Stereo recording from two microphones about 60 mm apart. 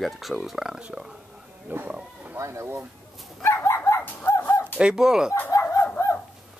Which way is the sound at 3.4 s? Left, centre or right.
Left.